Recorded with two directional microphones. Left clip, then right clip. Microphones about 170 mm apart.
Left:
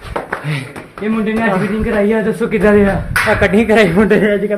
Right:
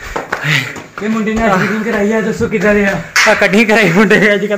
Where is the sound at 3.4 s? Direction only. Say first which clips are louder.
Right 1 dB; 25° right (ahead or behind).